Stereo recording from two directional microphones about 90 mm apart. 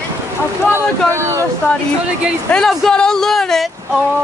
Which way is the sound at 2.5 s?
Centre (ahead or behind).